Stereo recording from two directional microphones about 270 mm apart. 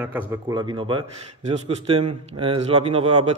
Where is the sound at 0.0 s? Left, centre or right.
Centre.